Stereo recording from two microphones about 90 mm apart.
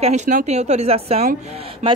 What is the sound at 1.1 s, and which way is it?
Speech, 90° right.